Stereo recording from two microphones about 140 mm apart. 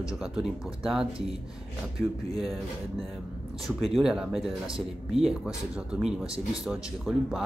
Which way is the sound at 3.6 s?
Centre (ahead or behind).